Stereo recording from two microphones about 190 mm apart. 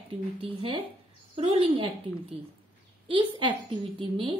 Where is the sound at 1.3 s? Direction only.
30° right (ahead or behind).